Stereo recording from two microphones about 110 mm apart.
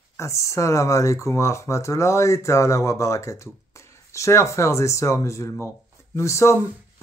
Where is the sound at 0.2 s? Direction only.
25° left (ahead or behind).